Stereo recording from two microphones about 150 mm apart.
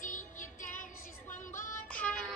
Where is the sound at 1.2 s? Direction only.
60° left (ahead or behind).